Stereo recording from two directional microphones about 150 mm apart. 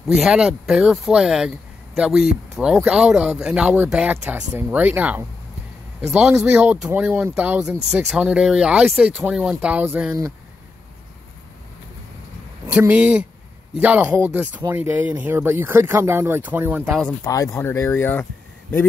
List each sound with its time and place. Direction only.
0.0 s speech: 5° right (ahead or behind)
12.6 s speech: 10° right (ahead or behind)
17.2 s speech: 20° left (ahead or behind)